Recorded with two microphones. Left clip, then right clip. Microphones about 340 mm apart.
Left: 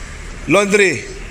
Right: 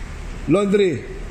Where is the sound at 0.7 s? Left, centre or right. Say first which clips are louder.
Left 5 dB; left.